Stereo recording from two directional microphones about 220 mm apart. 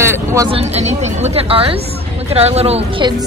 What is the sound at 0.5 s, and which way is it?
A woman's voice, 30° right (ahead or behind).